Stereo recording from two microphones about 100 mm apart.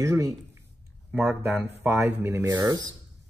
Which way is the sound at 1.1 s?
Centre (ahead or behind).